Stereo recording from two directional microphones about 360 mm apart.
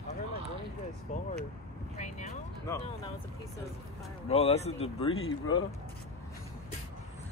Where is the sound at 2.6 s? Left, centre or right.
Centre.